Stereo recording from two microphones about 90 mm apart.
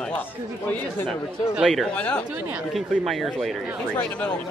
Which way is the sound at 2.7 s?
Centre (ahead or behind).